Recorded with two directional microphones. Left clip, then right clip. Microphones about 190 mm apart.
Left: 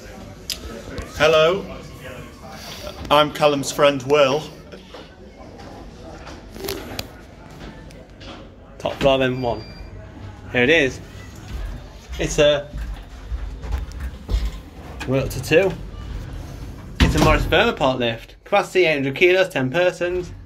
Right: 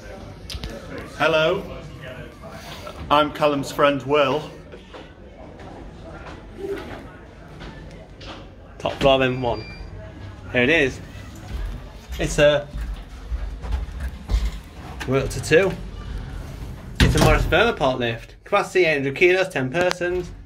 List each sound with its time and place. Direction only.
1.1 s a man's voice: 30° left (ahead or behind)
3.1 s a man's voice: 25° left (ahead or behind)
8.8 s speech: centre (ahead or behind)
12.2 s speech: 10° right (ahead or behind)
15.0 s speech: 5° right (ahead or behind)
17.1 s speech: centre (ahead or behind)